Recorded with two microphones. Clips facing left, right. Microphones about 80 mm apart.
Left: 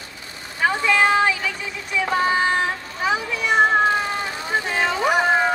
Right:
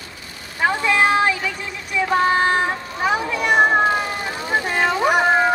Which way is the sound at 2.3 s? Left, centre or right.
Right.